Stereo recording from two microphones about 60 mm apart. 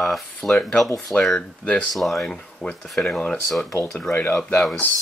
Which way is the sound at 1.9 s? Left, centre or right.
Centre.